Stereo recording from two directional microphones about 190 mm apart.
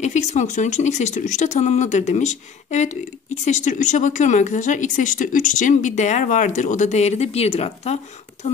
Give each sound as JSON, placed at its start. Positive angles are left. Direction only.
{"t": 0.0, "sound": "speech", "side_deg": 40}